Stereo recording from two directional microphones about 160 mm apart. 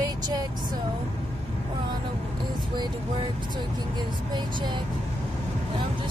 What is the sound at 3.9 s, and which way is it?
Speech, 30° right (ahead or behind).